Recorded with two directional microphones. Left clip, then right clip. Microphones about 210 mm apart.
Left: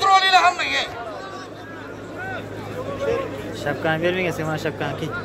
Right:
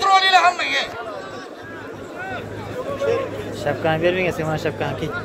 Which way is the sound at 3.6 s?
Centre (ahead or behind).